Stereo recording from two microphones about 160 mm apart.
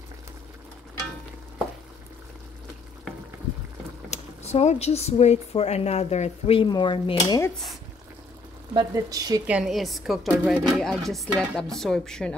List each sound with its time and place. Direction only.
4.1 s speech: 40° left (ahead or behind)
8.7 s speech: 20° right (ahead or behind)
9.5 s speech: 5° right (ahead or behind)